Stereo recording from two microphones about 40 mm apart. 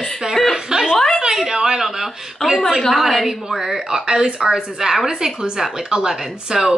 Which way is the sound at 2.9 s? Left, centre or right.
Centre.